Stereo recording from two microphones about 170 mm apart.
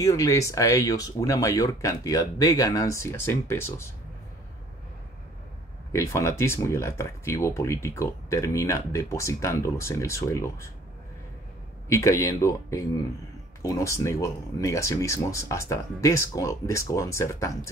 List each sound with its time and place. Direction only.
0.0 s speech: 20° left (ahead or behind)
5.9 s speech: 15° left (ahead or behind)
11.9 s speech: 15° left (ahead or behind)